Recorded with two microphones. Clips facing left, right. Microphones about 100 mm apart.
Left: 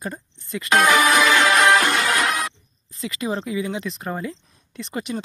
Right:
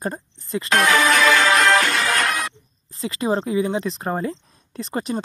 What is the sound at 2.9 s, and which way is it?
Speech, 35° right (ahead or behind).